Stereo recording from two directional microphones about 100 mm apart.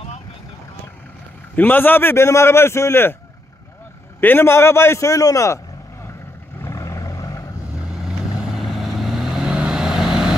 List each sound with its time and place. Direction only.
1.5 s a man's voice: 20° left (ahead or behind)
4.2 s a man's voice: 20° left (ahead or behind)
6.6 s vehicle: 30° left (ahead or behind)
8.5 s vehicle: centre (ahead or behind)